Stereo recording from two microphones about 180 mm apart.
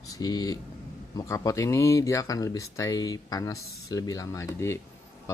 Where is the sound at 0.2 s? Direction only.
20° left (ahead or behind).